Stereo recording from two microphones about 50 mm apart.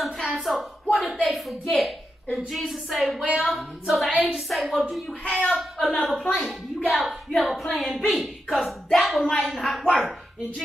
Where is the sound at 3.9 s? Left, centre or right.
Centre.